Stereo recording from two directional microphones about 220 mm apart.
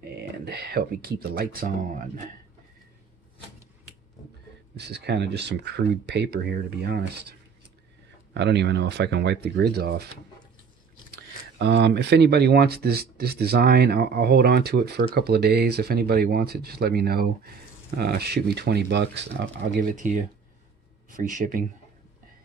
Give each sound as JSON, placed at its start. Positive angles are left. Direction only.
{"t": 0.5, "sound": "speech", "side_deg": -45}
{"t": 4.7, "sound": "speech", "side_deg": -50}
{"t": 11.5, "sound": "speech", "side_deg": -50}